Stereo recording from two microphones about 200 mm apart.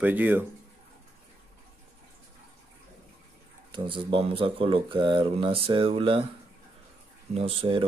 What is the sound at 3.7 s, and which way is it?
Speech, 25° right (ahead or behind).